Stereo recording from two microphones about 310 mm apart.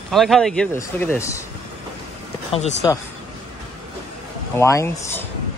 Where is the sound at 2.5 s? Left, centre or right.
Centre.